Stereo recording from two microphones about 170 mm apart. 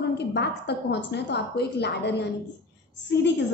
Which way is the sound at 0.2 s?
85° left.